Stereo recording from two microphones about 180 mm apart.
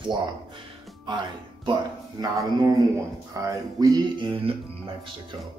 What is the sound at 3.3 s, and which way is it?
Music, 20° right (ahead or behind).